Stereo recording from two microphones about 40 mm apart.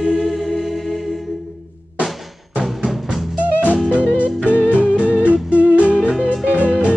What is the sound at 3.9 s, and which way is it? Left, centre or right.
Music, right.